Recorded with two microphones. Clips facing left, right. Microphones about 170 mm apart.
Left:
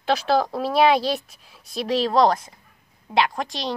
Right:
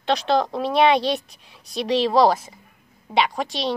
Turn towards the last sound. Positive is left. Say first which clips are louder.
# right 1 dB
turn(degrees=0)  # may be behind; listen again after turning